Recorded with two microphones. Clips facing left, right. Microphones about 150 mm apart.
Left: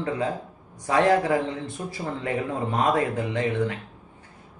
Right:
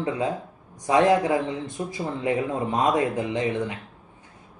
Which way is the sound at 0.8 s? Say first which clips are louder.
Right 1 dB; 15° right (ahead or behind).